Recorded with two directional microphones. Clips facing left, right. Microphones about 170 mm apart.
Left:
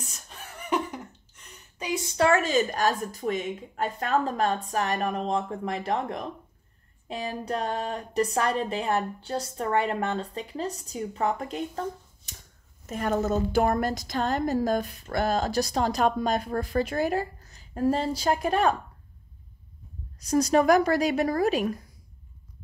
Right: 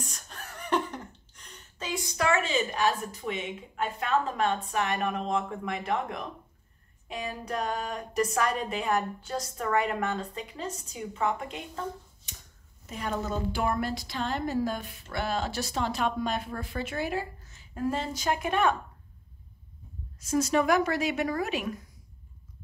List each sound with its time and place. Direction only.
0.1 s chuckle: 5° left (ahead or behind)
2.1 s a woman's voice: 40° left (ahead or behind)
12.8 s a woman's voice: 50° left (ahead or behind)
20.2 s a woman's voice: 40° left (ahead or behind)